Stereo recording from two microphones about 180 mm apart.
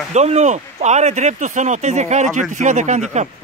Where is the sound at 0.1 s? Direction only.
40° right (ahead or behind).